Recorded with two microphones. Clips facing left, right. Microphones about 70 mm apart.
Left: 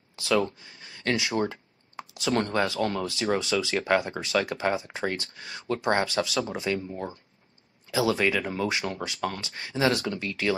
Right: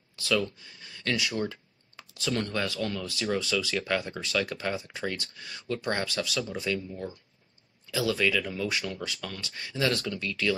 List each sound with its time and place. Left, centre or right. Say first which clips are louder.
0.1 s a sound: left 3 dB; left
2.3 s speech: left 6 dB; left
3.3 s speech: left 3 dB; left